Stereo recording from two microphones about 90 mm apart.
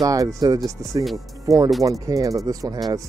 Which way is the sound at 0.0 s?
40° right (ahead or behind).